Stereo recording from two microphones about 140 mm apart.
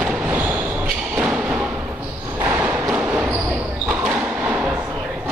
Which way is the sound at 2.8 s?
10° right (ahead or behind).